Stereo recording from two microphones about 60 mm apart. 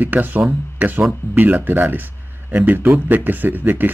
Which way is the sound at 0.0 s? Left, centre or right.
Right.